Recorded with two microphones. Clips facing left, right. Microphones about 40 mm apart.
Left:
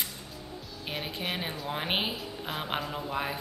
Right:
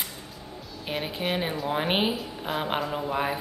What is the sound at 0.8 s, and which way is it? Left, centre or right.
A woman's voice, centre.